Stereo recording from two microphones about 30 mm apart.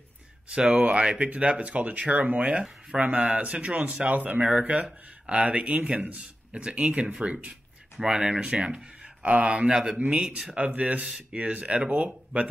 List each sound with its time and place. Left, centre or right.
0.5 s speech: right
1.3 s speech: right
3.0 s speech: right
3.4 s speech: right
4.0 s speech: right
6.5 s speech: right
10.6 s speech: right
11.3 s speech: right
12.3 s speech: right